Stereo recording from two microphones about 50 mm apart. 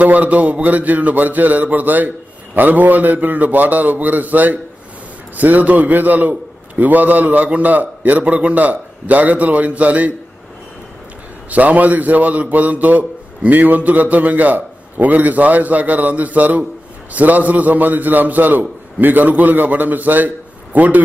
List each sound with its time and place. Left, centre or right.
0.0 s a man's voice: right
8.2 s a man's voice: right
11.5 s a man's voice: right